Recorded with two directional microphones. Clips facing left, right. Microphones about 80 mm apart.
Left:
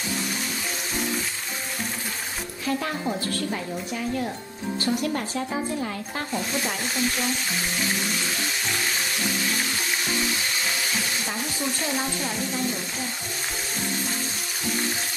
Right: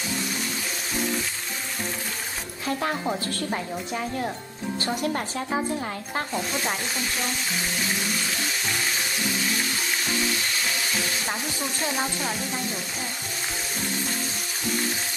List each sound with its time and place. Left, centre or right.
2.6 s a woman's voice: right
4.8 s a woman's voice: right